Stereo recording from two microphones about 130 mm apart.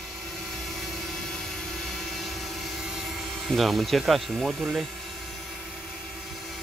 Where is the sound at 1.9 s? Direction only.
Centre (ahead or behind).